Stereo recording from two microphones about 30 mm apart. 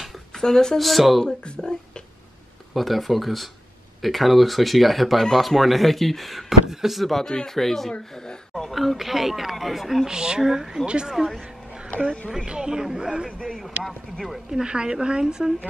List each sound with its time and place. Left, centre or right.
0.3 s speech: centre
0.7 s speech: centre
1.2 s speech: left
2.7 s speech: centre
6.7 s speech: centre
7.0 s speech: centre
7.2 s speech: centre
8.6 s speech: centre
10.0 s a woman's voice: right
12.4 s a woman's voice: right
14.5 s a woman's voice: right